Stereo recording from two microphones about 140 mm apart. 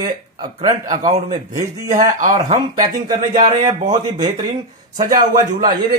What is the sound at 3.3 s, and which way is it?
Speech, 45° right (ahead or behind).